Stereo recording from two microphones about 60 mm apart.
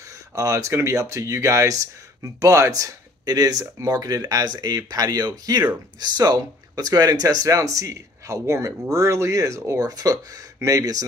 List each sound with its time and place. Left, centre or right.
0.3 s speech: right
9.8 s speech: right
10.6 s speech: right